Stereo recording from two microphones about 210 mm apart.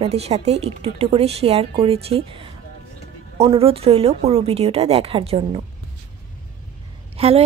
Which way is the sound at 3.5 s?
25° right (ahead or behind).